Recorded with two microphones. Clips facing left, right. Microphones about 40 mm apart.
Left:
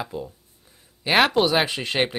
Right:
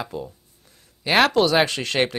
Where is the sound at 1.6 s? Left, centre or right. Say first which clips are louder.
Right 2 dB; centre.